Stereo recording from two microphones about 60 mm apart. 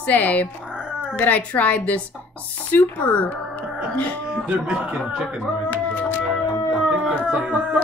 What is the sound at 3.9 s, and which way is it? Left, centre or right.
Music, left.